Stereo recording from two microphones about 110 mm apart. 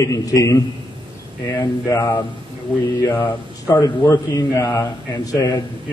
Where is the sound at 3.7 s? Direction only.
45° left (ahead or behind).